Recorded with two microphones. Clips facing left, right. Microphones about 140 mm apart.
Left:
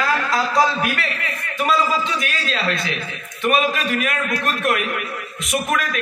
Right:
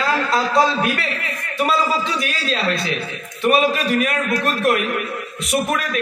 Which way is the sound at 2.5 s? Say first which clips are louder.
Right 3 dB; 35° right (ahead or behind).